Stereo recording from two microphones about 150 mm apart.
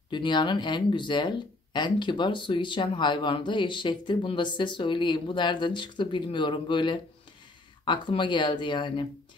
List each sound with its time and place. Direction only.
0.1 s speech: 30° left (ahead or behind)